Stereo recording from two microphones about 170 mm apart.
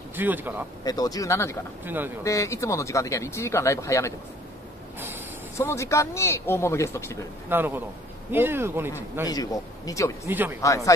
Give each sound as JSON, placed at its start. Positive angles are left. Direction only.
{"t": 0.1, "sound": "speech", "side_deg": -10}
{"t": 0.8, "sound": "speech", "side_deg": 20}
{"t": 1.9, "sound": "speech", "side_deg": -10}
{"t": 2.2, "sound": "speech", "side_deg": 15}
{"t": 5.6, "sound": "speech", "side_deg": 15}
{"t": 7.4, "sound": "speech", "side_deg": -10}
{"t": 9.3, "sound": "speech", "side_deg": 20}
{"t": 10.2, "sound": "speech", "side_deg": -10}
{"t": 10.6, "sound": "speech", "side_deg": 20}